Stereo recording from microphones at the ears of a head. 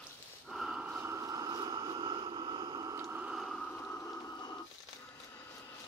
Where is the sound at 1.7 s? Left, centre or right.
Right.